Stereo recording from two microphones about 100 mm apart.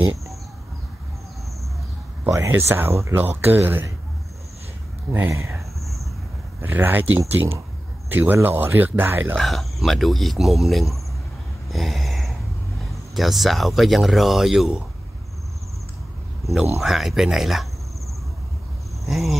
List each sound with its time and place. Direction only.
2.2 s speech: 25° right (ahead or behind)
5.1 s speech: 25° right (ahead or behind)
6.6 s speech: 20° right (ahead or behind)
9.4 s speech: centre (ahead or behind)
11.7 s gasp: centre (ahead or behind)
13.1 s speech: centre (ahead or behind)
16.8 s speech: 5° right (ahead or behind)
19.0 s speech: centre (ahead or behind)